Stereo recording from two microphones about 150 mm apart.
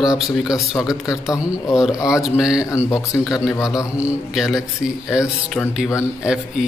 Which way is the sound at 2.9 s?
20° left (ahead or behind).